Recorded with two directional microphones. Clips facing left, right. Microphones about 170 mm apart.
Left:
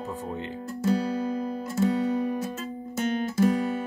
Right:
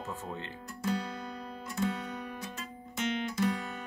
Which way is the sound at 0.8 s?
35° left (ahead or behind).